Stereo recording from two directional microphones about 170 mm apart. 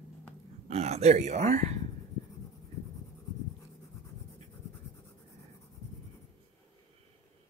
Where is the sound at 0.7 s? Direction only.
40° right (ahead or behind).